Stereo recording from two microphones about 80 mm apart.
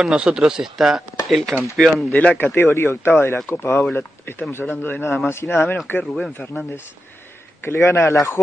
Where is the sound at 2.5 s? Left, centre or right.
Left.